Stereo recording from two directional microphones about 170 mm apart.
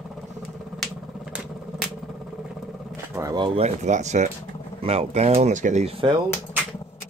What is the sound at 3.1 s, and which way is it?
Speech, 20° right (ahead or behind).